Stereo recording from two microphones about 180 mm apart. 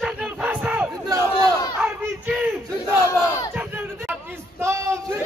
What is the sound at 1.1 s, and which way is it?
Battle cry, 20° right (ahead or behind).